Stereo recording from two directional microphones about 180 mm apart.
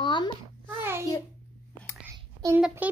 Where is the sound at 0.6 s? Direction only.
15° right (ahead or behind).